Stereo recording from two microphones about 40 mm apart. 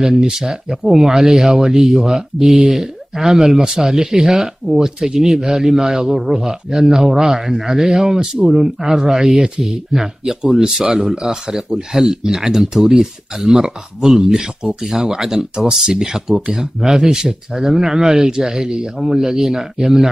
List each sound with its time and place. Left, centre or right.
0.0 s speech: centre
11.1 s speech: centre